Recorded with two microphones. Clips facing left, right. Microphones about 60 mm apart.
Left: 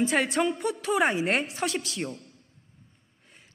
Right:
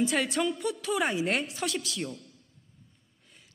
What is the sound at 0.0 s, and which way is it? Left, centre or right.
A man's voice, left.